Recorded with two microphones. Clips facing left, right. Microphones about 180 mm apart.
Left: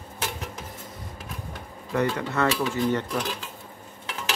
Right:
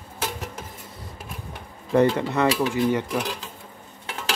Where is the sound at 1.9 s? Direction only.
25° right (ahead or behind).